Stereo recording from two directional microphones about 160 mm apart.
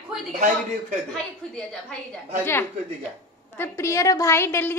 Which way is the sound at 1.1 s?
5° left (ahead or behind).